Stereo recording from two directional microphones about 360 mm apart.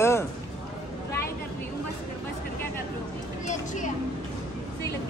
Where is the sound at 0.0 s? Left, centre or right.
Centre.